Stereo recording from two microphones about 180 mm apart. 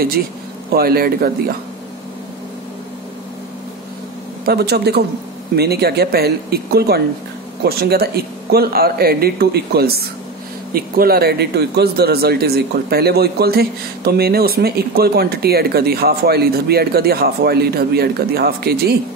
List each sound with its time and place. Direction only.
0.7 s speech: 55° right (ahead or behind)
4.5 s speech: 65° right (ahead or behind)